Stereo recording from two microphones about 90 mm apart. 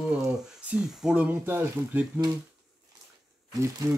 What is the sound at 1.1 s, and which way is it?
Speech, 20° right (ahead or behind).